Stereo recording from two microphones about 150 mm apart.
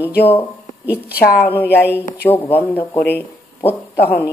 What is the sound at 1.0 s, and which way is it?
Speech, 90° left.